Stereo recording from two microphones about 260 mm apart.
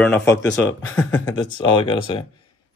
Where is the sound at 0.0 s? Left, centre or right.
Centre.